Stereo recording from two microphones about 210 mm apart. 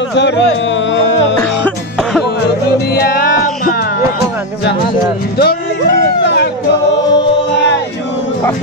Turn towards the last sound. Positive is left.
turn(degrees=55)  # may be behind; listen again after turning